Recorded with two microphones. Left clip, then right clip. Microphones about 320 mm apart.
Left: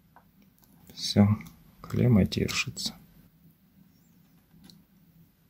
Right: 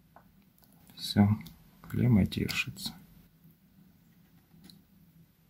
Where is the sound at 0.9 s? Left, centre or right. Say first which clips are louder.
Left 3 dB; centre.